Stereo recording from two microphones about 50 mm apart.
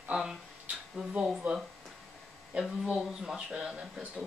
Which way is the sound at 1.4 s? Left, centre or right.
Right.